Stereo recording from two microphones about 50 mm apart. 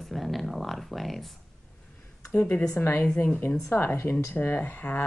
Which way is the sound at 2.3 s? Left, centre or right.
Left.